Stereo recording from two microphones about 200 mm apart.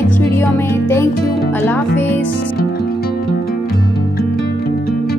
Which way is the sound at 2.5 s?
50° left (ahead or behind).